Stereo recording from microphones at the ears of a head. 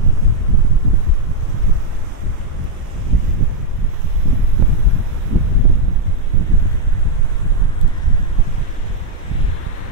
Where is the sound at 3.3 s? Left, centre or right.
Right.